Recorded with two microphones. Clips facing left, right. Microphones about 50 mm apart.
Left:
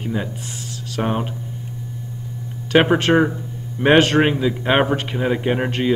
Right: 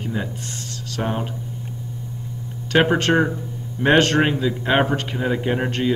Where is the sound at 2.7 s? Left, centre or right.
Centre.